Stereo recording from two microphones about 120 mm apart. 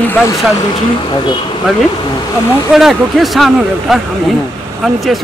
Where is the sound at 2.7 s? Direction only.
5° right (ahead or behind).